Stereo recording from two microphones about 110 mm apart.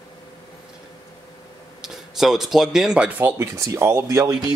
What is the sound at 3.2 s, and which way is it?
Speech, 20° right (ahead or behind).